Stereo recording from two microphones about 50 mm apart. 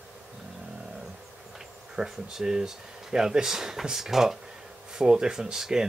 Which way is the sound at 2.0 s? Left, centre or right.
Centre.